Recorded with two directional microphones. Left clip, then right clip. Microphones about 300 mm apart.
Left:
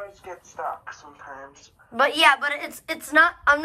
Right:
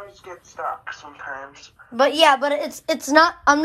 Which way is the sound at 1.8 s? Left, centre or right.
Centre.